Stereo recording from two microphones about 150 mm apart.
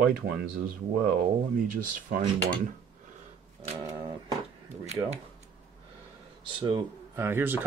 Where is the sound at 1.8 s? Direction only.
65° right (ahead or behind).